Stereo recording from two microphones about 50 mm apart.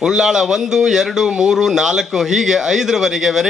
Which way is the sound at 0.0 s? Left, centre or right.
Centre.